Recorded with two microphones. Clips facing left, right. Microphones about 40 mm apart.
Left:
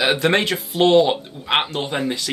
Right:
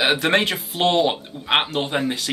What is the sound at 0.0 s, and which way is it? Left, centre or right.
Speech, centre.